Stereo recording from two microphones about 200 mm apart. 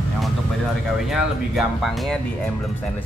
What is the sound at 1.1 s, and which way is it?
Speech, centre (ahead or behind).